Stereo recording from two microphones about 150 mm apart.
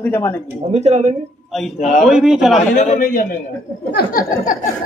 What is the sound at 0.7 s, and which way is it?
Speech, 50° right (ahead or behind).